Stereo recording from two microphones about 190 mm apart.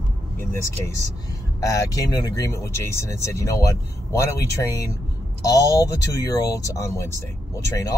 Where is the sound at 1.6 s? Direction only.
15° left (ahead or behind).